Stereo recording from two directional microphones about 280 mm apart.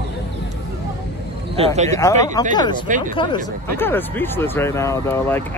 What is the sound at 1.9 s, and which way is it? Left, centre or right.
Speech, centre.